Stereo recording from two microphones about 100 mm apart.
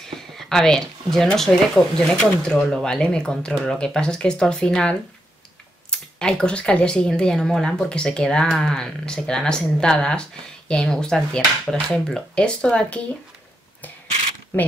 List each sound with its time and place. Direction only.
0.1 s speech: 5° left (ahead or behind)
14.5 s speech: 20° left (ahead or behind)